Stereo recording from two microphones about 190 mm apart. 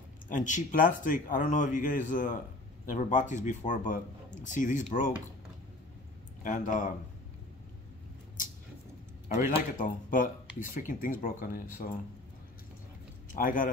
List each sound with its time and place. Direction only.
0.3 s speech: 40° left (ahead or behind)
6.4 s speech: 40° left (ahead or behind)
9.8 s speech: 45° left (ahead or behind)
13.3 s speech: 45° left (ahead or behind)